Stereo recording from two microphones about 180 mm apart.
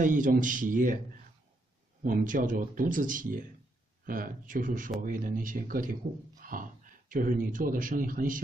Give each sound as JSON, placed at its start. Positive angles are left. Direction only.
{"t": 0.0, "sound": "speech", "side_deg": -50}
{"t": 2.0, "sound": "speech", "side_deg": -50}